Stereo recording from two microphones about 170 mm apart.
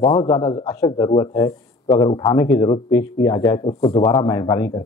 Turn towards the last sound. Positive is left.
turn(degrees=20)  # may be behind; listen again after turning